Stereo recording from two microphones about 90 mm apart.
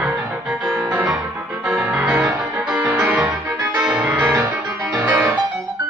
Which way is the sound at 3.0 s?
15° right (ahead or behind).